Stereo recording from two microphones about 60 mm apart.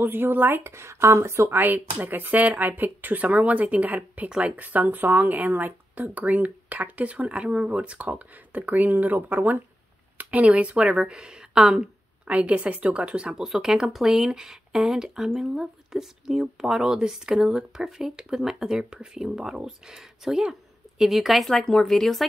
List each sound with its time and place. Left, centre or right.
0.0 s speech: right
1.5 s a woman's voice: right; by 22.2 s centre